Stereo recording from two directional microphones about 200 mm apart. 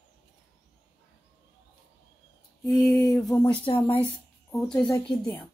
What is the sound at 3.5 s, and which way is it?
Speech, 25° left (ahead or behind).